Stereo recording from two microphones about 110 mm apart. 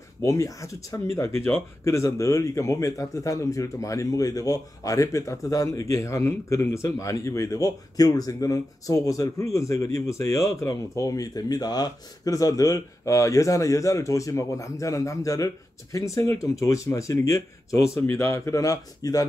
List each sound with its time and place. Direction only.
0.2 s speech: 30° left (ahead or behind)